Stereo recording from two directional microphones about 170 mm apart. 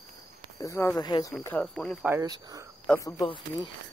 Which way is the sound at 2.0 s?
15° right (ahead or behind).